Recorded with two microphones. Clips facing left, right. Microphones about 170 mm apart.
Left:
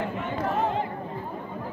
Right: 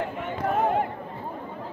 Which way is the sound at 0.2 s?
50° right (ahead or behind).